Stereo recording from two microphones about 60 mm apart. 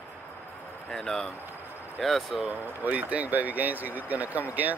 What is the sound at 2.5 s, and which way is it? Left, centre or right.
Speech, right.